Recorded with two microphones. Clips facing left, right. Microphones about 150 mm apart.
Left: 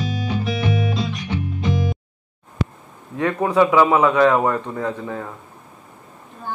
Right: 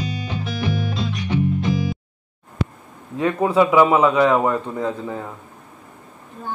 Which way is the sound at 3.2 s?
15° right (ahead or behind).